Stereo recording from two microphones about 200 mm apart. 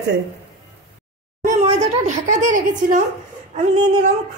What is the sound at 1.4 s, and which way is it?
Speech, 35° right (ahead or behind).